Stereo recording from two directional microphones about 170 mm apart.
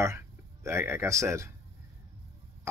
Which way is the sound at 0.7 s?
15° right (ahead or behind).